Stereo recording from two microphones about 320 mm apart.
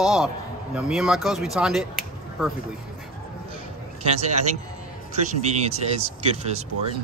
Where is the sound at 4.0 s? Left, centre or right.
Centre.